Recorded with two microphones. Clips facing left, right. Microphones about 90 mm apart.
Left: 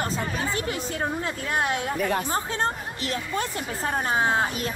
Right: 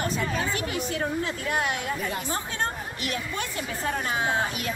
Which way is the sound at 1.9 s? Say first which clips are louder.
Left 6 dB; 55° left (ahead or behind).